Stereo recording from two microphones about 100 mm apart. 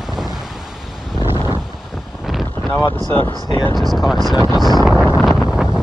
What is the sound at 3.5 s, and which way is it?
Speech, 45° left (ahead or behind).